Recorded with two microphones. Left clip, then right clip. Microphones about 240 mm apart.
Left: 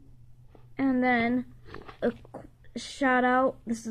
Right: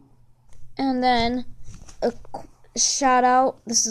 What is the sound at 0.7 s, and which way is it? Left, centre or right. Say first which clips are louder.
A woman's voice: right 5 dB; right.